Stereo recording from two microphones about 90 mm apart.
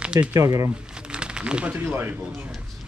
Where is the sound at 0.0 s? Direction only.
10° right (ahead or behind).